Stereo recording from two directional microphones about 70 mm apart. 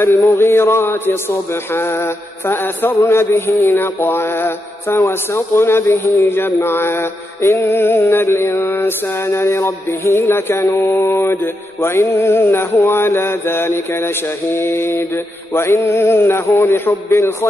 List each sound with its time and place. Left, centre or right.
0.2 s mantra: left